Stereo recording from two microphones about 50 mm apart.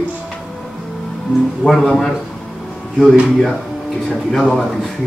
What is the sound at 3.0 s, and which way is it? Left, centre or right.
Speech, right.